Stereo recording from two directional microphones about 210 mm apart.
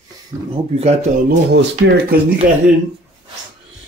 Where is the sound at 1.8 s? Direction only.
50° right (ahead or behind).